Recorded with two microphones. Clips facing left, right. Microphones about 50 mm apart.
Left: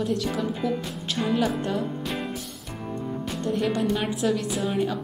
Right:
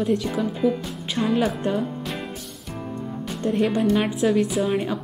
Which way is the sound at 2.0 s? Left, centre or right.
Centre.